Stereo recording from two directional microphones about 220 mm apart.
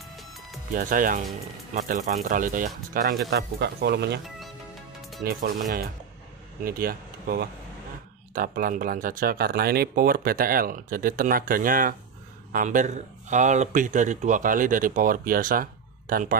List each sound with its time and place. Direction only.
0.7 s speech: 40° right (ahead or behind)
5.2 s speech: 40° right (ahead or behind)
6.6 s speech: 40° right (ahead or behind)